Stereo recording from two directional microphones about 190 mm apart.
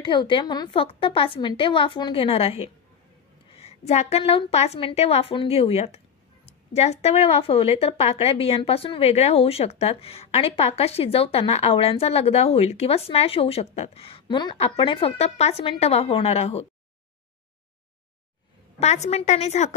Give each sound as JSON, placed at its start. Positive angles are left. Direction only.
{"t": 0.0, "sound": "a woman's voice", "side_deg": 25}
{"t": 18.8, "sound": "a woman's voice", "side_deg": 35}